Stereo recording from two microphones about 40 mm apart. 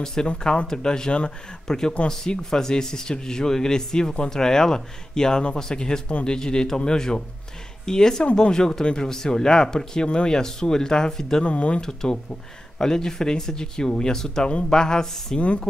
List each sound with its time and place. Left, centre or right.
0.0 s speech: centre
11.4 s speech: left
11.8 s speech: centre